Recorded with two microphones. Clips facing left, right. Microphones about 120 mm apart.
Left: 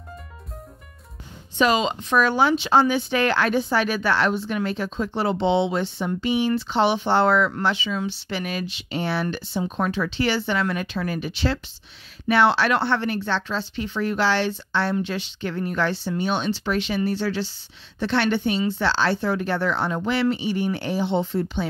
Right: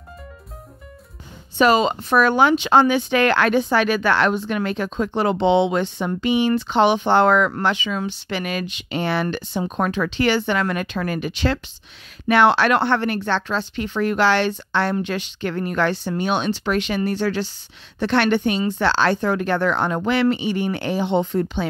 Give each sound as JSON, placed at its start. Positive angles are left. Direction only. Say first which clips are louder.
{"t": 1.6, "sound": "speech", "louder": "right 4 dB", "side_deg": -45}
{"t": 6.5, "sound": "speech", "louder": "right 4 dB", "side_deg": -60}
{"t": 8.3, "sound": "speech", "louder": "right 3 dB", "side_deg": -70}